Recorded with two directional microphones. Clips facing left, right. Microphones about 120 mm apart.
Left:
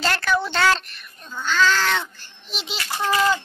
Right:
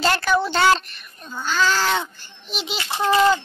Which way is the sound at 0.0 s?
5° right (ahead or behind).